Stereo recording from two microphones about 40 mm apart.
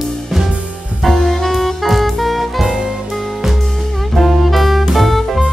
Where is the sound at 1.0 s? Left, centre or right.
Centre.